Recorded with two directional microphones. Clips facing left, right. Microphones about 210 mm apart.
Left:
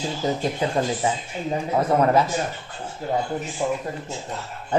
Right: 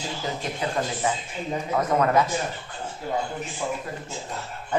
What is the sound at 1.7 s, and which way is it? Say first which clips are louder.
Speech: left 3 dB; 30° left (ahead or behind).